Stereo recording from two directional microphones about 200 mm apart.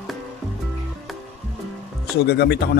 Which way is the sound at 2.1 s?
55° left (ahead or behind).